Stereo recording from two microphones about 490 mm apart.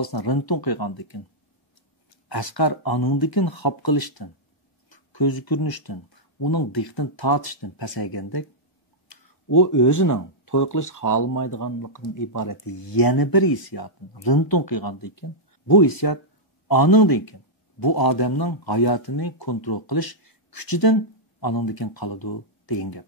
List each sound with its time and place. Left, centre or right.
0.0 s a man's voice: left
2.2 s a man's voice: left